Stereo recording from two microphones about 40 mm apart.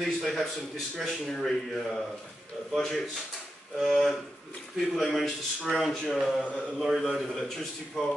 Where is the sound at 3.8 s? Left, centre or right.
Centre.